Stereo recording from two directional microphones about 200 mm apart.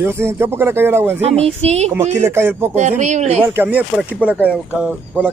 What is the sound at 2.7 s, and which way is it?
Speech, 35° right (ahead or behind).